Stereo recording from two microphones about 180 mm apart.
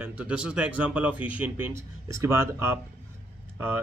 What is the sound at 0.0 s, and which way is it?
A man's voice, 5° right (ahead or behind).